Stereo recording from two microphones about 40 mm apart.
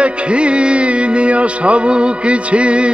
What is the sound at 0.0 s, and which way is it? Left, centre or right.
Music, right.